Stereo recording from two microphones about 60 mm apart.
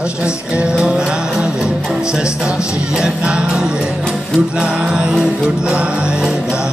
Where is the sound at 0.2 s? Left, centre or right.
Centre.